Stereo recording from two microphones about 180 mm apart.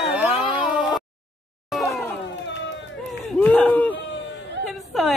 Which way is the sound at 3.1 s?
5° left (ahead or behind).